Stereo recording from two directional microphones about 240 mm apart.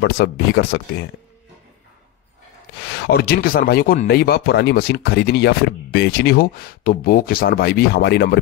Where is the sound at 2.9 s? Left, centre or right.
Left.